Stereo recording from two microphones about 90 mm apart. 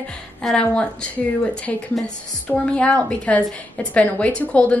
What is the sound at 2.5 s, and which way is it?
A woman's voice, 10° left (ahead or behind).